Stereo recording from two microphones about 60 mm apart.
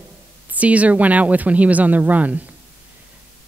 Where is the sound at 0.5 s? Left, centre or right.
Right.